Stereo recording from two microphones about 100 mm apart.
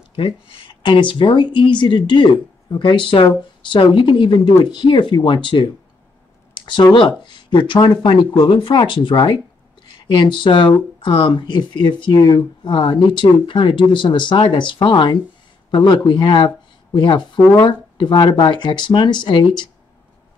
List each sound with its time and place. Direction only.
0.1 s speech: 60° left (ahead or behind)
16.4 s a sound: 50° left (ahead or behind)
17.6 s speech: 55° left (ahead or behind)